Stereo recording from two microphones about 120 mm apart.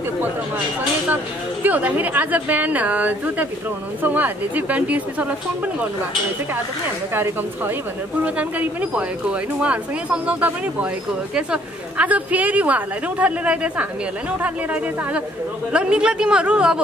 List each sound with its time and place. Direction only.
1.1 s speech: 15° right (ahead or behind)
7.2 s speech: 20° right (ahead or behind)